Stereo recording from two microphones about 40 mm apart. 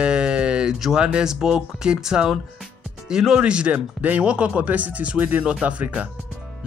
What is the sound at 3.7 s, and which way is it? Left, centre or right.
Speech, right.